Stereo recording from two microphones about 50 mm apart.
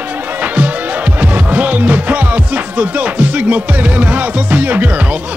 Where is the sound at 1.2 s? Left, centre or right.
Right.